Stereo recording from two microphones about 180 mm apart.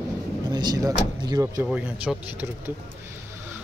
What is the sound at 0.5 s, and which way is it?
Speech, 20° right (ahead or behind).